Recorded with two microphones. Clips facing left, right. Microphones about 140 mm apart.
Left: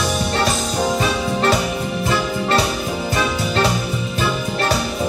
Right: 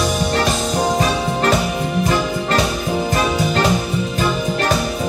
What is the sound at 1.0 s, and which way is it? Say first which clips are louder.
Music: right 1 dB; 40° right (ahead or behind).